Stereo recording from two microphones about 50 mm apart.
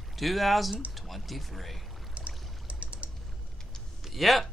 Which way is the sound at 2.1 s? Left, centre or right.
Right.